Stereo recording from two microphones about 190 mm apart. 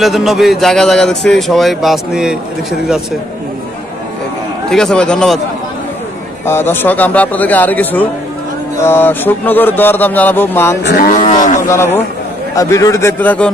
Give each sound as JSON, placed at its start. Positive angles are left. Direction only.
{"t": 0.0, "sound": "a man's voice", "side_deg": 0}
{"t": 4.6, "sound": "a man's voice", "side_deg": 5}
{"t": 6.4, "sound": "a man's voice", "side_deg": 10}
{"t": 11.1, "sound": "cattle", "side_deg": 40}
{"t": 11.6, "sound": "a man's voice", "side_deg": 15}